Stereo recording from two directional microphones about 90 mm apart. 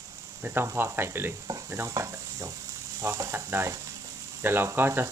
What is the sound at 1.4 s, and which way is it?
Sizzle, 40° right (ahead or behind).